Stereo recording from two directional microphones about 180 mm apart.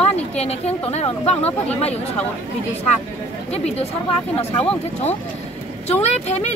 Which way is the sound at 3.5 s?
35° left (ahead or behind).